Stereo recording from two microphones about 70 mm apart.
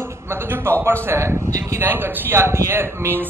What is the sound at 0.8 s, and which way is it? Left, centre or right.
A man's voice, right.